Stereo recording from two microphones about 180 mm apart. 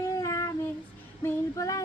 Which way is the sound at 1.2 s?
20° left (ahead or behind).